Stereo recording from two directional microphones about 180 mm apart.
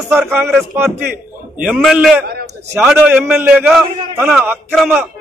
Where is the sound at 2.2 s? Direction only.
60° right (ahead or behind).